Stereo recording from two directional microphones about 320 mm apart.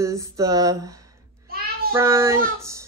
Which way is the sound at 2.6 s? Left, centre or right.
Centre.